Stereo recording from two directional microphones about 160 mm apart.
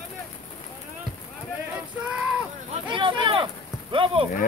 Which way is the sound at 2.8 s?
30° right (ahead or behind).